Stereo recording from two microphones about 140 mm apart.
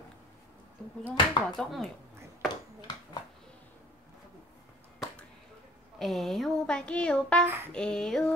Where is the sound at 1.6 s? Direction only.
Centre (ahead or behind).